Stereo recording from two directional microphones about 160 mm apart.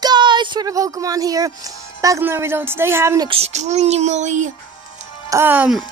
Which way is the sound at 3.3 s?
45° right (ahead or behind).